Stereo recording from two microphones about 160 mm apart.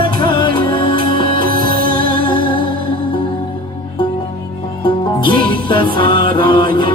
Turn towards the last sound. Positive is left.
turn(degrees=30)  # may be behind; listen again after turning